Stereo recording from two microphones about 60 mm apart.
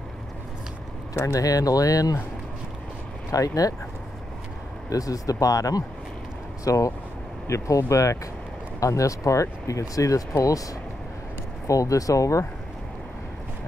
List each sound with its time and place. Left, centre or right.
1.1 s speech: left
3.3 s speech: left
4.8 s speech: left
6.6 s speech: left